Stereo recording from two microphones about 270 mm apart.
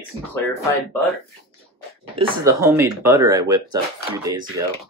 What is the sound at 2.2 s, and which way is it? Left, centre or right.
Speech, centre.